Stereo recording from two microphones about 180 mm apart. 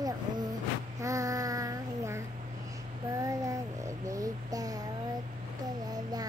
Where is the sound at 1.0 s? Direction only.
20° right (ahead or behind).